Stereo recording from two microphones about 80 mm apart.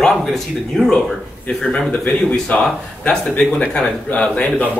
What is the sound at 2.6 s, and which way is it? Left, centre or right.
Speech, centre.